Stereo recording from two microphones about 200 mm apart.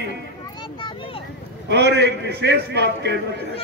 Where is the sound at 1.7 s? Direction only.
55° right (ahead or behind).